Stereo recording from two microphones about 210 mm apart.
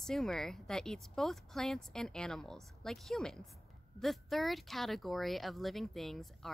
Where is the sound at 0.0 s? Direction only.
Centre (ahead or behind).